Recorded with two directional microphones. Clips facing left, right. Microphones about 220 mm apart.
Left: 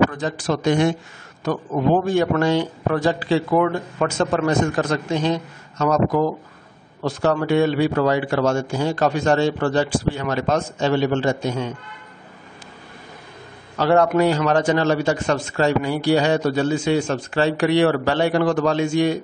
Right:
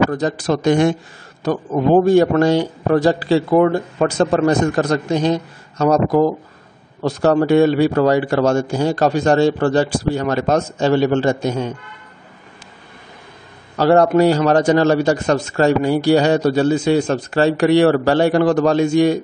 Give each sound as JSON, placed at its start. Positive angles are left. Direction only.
{"t": 0.1, "sound": "a man's voice", "side_deg": -40}
{"t": 13.7, "sound": "a man's voice", "side_deg": -40}